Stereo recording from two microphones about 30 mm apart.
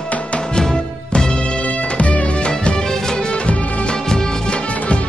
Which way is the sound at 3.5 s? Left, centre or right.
Left.